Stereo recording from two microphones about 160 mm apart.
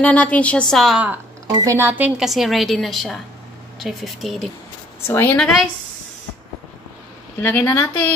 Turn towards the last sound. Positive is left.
turn(degrees=10)  # may be behind; listen again after turning